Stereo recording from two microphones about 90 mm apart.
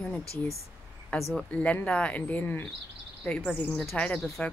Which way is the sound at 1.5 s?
15° left (ahead or behind).